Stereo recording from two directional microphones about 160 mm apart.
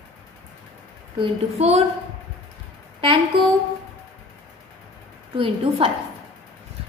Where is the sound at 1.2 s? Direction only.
40° right (ahead or behind).